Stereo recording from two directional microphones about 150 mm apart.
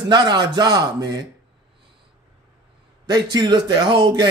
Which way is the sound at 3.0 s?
25° right (ahead or behind).